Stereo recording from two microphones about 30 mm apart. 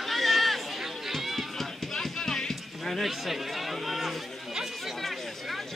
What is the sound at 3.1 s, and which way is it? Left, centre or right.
Chatter, centre.